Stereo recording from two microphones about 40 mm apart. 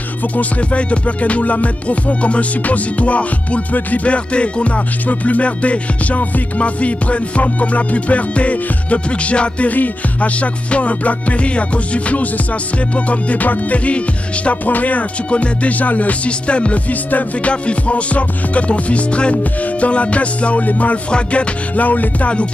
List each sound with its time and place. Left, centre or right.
0.6 s music: left
14.6 s music: left
16.3 s music: left
16.9 s music: left
17.5 s music: left